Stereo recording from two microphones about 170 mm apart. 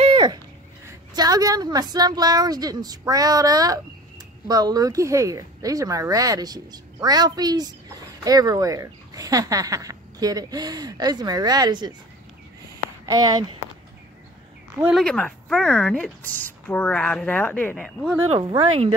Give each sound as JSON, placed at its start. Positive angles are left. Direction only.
{"t": 0.0, "sound": "a sound", "side_deg": -30}
{"t": 0.8, "sound": "speech", "side_deg": -20}
{"t": 13.0, "sound": "speech", "side_deg": -25}
{"t": 15.0, "sound": "speech", "side_deg": 5}
{"t": 18.3, "sound": "speech", "side_deg": -30}